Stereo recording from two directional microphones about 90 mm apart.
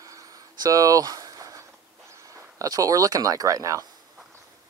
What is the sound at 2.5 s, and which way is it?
Speech, 40° right (ahead or behind).